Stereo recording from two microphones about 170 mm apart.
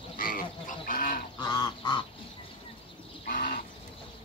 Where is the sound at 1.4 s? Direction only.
25° left (ahead or behind).